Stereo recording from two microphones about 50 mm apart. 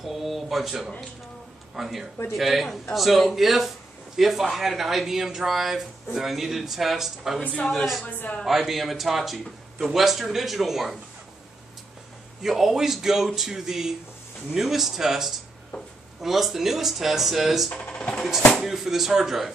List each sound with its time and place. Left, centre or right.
0.0 s speech: centre
8.0 s speech: left
8.5 s speech: centre
12.4 s a man's voice: centre
15.7 s speech: left
16.2 s speech: centre
17.6 s speech: centre
18.5 s speech: centre